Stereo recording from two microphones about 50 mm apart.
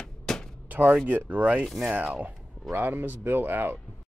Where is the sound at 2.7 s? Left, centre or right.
Right.